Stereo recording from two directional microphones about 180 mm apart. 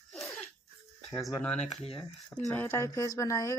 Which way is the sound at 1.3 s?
10° left (ahead or behind).